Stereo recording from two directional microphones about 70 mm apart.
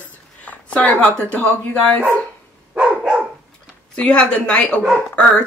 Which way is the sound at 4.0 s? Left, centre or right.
Centre.